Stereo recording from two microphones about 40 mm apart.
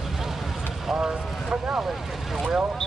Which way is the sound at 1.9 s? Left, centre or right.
Centre.